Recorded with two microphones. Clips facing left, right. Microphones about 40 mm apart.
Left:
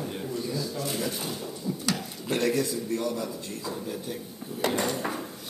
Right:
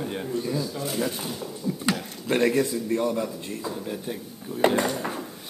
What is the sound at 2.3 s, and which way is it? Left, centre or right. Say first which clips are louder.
A man's voice: right 4 dB; right.